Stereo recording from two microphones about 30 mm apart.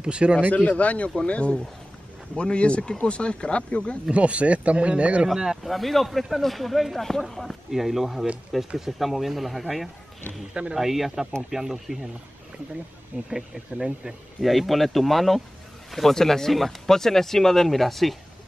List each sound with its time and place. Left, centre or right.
0.0 s speech: right
0.5 s speech: left
4.1 s speech: right
5.6 s speech: centre
13.3 s speech: right
14.4 s speech: centre